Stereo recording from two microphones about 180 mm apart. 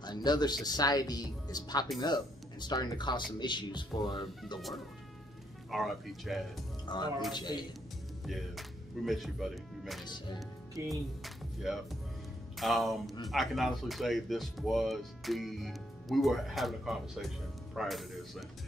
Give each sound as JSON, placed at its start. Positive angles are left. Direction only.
{"t": 0.0, "sound": "speech", "side_deg": 25}
{"t": 5.7, "sound": "speech", "side_deg": 0}
{"t": 6.9, "sound": "speech", "side_deg": 25}
{"t": 8.3, "sound": "speech", "side_deg": 0}